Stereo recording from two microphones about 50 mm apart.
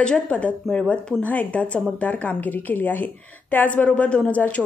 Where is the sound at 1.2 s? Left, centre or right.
Left.